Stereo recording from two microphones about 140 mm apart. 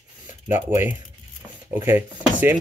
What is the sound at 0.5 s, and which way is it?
Speech, 15° right (ahead or behind).